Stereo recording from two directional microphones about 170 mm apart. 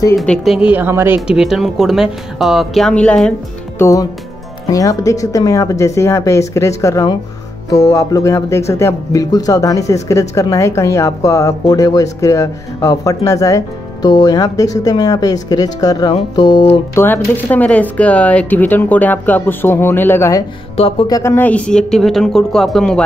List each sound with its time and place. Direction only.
0.2 s speech: centre (ahead or behind)
3.8 s speech: 20° left (ahead or behind)
16.9 s speech: 10° left (ahead or behind)